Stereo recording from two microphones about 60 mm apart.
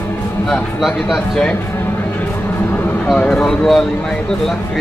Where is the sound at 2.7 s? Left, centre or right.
Left.